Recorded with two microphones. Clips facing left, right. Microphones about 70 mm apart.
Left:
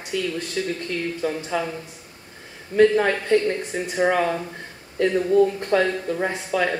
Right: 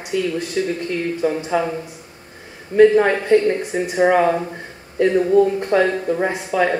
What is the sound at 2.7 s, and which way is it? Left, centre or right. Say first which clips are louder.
Speech: right 5 dB; centre.